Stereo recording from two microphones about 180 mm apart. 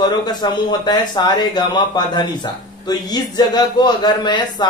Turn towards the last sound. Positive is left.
turn(degrees=25)  # may be behind; listen again after turning